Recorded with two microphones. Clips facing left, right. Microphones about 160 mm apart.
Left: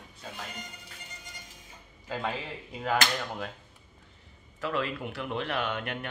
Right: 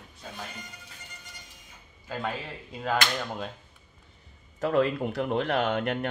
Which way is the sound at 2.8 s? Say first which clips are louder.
Even; 10° left (ahead or behind).